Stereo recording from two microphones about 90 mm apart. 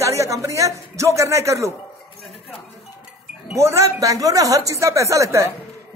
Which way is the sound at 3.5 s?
35° right (ahead or behind).